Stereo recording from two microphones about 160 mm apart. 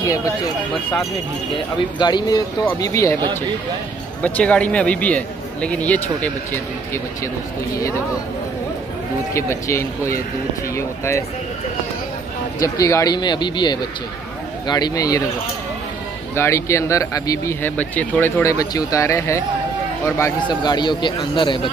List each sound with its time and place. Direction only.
0.0 s speech: 20° left (ahead or behind)
2.0 s a man's voice: 25° left (ahead or behind)
4.2 s speech: 10° left (ahead or behind)
9.3 s speech: 20° left (ahead or behind)
12.5 s a man's voice: 20° left (ahead or behind)
16.3 s speech: 15° left (ahead or behind)
18.4 s a man's voice: 20° left (ahead or behind)
20.3 s a man's voice: 30° left (ahead or behind)